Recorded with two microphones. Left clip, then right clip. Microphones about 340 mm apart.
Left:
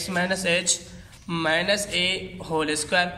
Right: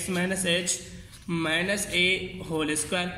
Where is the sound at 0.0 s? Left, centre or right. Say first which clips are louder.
Left 4 dB; left.